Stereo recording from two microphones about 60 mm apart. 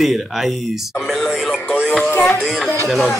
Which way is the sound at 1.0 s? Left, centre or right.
Centre.